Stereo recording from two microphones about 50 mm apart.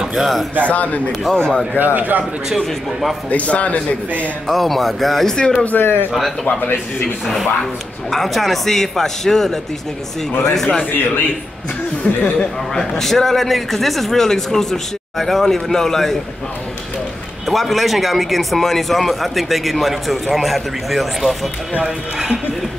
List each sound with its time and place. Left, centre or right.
0.1 s speech: centre
0.7 s a man's voice: left
1.3 s speech: centre
2.0 s a man's voice: right
2.6 s speech: centre
3.3 s a man's voice: left
4.5 s speech: centre
5.7 s a man's voice: left
8.1 s speech: centre
10.9 s a man's voice: left
12.0 s a man's voice: left
12.7 s speech: centre
17.5 s speech: centre
21.8 s speech: centre